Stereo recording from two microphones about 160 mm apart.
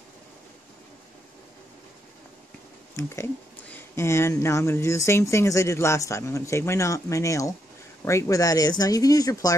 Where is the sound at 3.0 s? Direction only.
20° left (ahead or behind).